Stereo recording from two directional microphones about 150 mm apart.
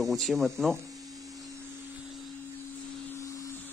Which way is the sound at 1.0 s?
25° right (ahead or behind).